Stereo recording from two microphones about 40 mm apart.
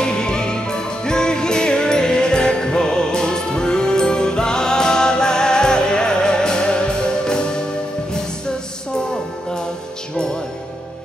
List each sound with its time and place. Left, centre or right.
0.0 s music: centre